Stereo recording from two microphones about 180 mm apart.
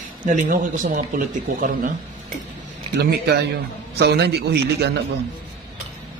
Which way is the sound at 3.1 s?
65° right (ahead or behind).